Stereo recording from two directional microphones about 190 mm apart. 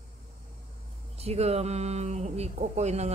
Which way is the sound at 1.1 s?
35° right (ahead or behind).